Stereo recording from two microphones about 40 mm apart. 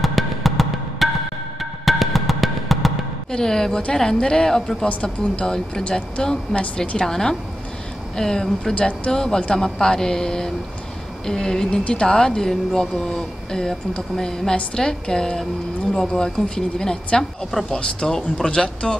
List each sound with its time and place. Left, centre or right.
0.0 s music: centre
3.3 s a woman's voice: centre
5.0 s speech: left
6.5 s a woman's voice: centre
8.7 s speech: left
9.1 s a woman's voice: centre
17.2 s a woman's voice: centre
18.0 s speech: centre